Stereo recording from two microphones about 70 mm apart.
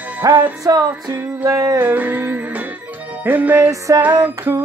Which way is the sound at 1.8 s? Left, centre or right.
Right.